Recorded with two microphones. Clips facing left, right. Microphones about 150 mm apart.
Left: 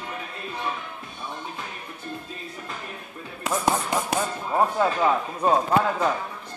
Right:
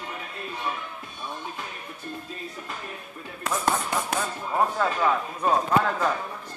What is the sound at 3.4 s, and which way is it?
Speech, 15° left (ahead or behind).